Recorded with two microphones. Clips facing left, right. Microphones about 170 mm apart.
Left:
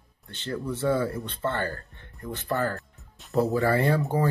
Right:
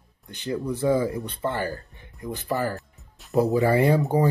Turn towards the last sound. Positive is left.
turn(degrees=-15)  # may be behind; listen again after turning